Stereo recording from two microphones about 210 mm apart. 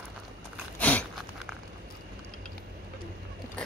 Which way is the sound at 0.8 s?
5° left (ahead or behind).